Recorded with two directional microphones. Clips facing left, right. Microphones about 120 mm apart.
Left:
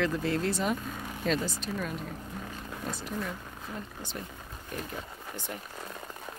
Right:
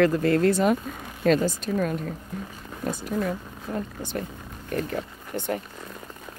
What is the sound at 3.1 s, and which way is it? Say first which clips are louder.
Speech: right 8 dB; 55° right (ahead or behind).